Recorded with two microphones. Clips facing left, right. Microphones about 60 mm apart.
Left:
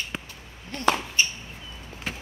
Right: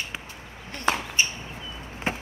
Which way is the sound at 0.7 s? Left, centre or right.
Centre.